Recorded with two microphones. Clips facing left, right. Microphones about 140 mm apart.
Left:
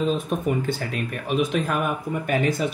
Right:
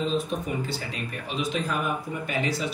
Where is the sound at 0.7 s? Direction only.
55° left (ahead or behind).